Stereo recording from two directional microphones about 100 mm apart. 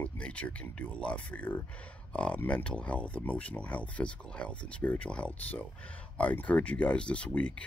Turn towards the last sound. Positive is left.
turn(degrees=10)  # may be behind; listen again after turning